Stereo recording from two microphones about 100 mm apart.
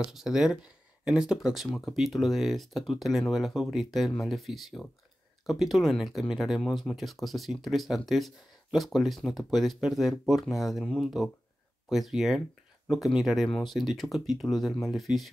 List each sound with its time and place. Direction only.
0.0 s speech: 5° right (ahead or behind)